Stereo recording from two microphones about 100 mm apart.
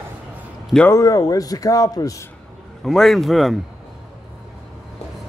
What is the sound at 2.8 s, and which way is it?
Speech, centre (ahead or behind).